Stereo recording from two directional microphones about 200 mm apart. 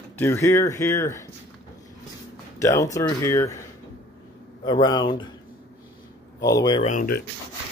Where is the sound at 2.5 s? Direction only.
15° left (ahead or behind).